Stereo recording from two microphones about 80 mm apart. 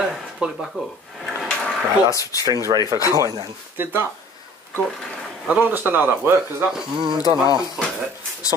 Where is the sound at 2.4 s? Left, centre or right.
Right.